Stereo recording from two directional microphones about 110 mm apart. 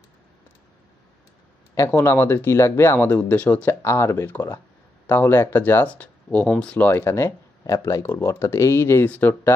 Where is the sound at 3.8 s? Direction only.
25° left (ahead or behind).